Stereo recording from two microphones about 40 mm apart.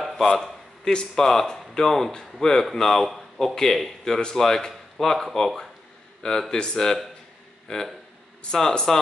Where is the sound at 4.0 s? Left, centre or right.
Centre.